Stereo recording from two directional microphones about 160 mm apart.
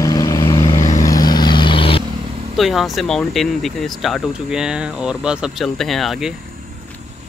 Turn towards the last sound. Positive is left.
turn(degrees=0)  # may be behind; listen again after turning